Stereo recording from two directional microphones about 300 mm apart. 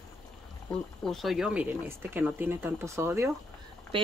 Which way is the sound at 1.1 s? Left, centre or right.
Centre.